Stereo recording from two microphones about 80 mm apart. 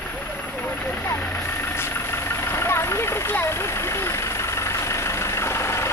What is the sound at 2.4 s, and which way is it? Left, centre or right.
Vehicle, left.